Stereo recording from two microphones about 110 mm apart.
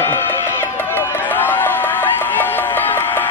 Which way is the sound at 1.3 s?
15° left (ahead or behind).